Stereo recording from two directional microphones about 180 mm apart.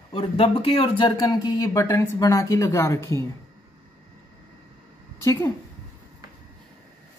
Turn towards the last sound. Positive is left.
turn(degrees=15)  # may be behind; listen again after turning